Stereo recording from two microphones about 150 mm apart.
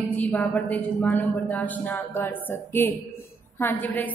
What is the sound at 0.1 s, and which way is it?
A woman's voice, 10° left (ahead or behind).